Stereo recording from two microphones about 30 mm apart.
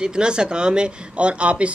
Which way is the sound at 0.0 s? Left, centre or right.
Right.